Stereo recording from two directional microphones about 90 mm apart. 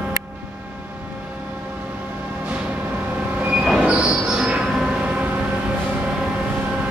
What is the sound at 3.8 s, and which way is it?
Train wheels squealing, 10° right (ahead or behind).